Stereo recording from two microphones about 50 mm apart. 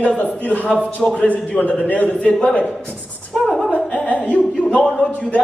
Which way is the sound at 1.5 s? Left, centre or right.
Left.